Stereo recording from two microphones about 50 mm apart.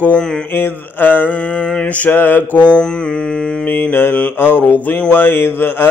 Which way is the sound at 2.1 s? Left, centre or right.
Left.